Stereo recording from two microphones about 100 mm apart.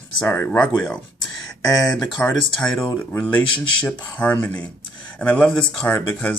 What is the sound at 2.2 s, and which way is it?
Speech, 15° left (ahead or behind).